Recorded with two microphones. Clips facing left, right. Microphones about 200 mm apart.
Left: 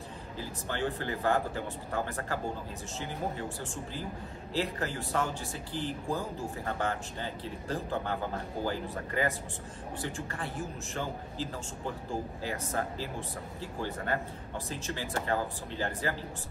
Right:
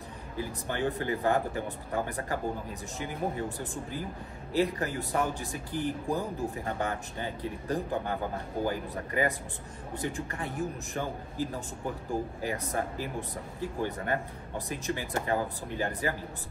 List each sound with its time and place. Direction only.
0.4 s a man's voice: 15° right (ahead or behind)